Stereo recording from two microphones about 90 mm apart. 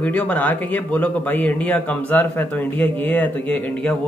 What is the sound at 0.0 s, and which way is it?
Speech, 15° left (ahead or behind).